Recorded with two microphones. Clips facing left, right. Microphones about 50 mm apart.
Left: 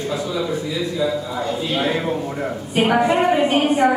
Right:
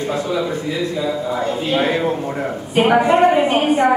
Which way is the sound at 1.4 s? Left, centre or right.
Right.